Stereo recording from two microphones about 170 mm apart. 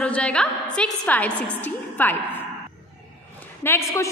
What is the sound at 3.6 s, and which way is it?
Speech, 15° left (ahead or behind).